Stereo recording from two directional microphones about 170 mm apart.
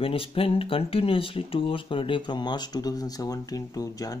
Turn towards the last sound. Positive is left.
turn(degrees=20)  # may be behind; listen again after turning